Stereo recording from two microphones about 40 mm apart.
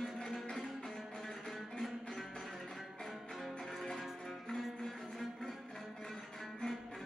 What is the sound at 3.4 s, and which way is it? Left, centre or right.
Music, centre.